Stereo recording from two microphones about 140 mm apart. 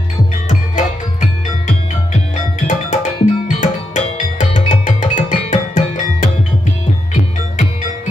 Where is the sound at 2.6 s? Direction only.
60° left (ahead or behind).